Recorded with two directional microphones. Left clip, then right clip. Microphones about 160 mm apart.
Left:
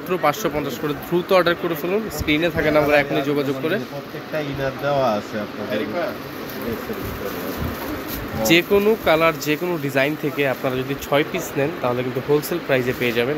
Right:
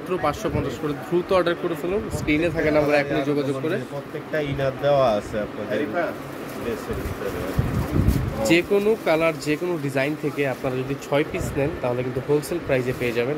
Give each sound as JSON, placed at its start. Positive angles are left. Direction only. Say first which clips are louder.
{"t": 0.1, "sound": "speech", "louder": "left 4 dB", "side_deg": -5}
{"t": 4.8, "sound": "speech", "louder": "right 1 dB", "side_deg": -35}
{"t": 8.5, "sound": "speech", "louder": "left 3 dB", "side_deg": 0}